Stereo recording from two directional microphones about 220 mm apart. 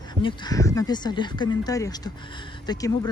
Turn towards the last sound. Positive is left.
turn(degrees=15)  # may be behind; listen again after turning